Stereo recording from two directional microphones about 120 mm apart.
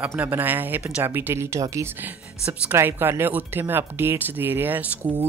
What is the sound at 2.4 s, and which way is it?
Speech, 15° right (ahead or behind).